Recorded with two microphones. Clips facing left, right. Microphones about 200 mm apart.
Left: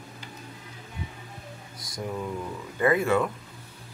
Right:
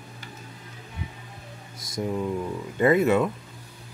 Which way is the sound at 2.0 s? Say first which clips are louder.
Right 5 dB; 20° right (ahead or behind).